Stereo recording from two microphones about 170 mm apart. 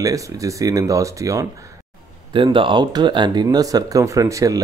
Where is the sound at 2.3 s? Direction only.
30° right (ahead or behind).